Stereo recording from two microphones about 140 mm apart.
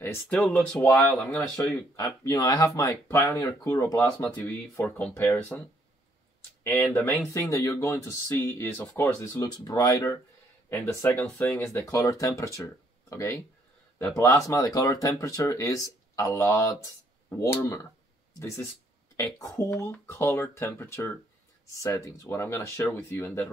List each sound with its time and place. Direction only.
0.3 s speech: 5° left (ahead or behind)
1.6 s speech: 20° left (ahead or behind)
6.6 s speech: 15° left (ahead or behind)
19.1 s speech: 25° left (ahead or behind)